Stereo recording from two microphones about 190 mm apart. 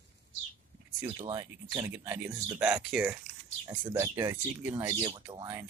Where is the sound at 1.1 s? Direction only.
25° right (ahead or behind).